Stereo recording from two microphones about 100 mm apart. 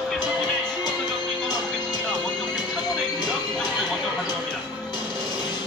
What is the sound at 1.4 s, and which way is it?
Music, 45° left (ahead or behind).